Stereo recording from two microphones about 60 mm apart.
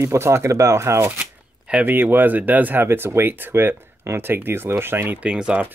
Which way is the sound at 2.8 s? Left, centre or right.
Right.